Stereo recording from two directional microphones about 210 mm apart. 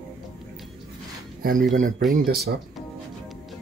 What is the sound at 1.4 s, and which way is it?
Speech, 40° right (ahead or behind).